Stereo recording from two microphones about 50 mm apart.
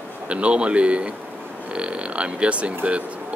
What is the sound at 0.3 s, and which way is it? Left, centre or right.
Speech, right.